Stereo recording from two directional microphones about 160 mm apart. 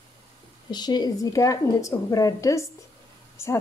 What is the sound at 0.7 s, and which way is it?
A woman's voice, 25° left (ahead or behind).